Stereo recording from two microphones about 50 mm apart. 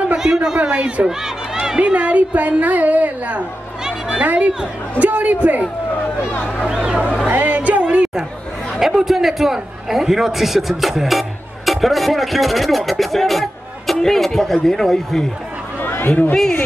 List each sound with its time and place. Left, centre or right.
0.1 s a man's voice: centre
1.8 s a woman's voice: right
3.8 s a sound: centre
5.0 s a woman's voice: right
6.8 s speech: right
7.2 s music: right
7.8 s chatter: right
8.7 s a man's voice: centre
15.8 s a sound: left
16.3 s a man's voice: centre